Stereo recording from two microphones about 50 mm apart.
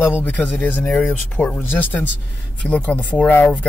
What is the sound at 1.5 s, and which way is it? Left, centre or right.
Speech, left.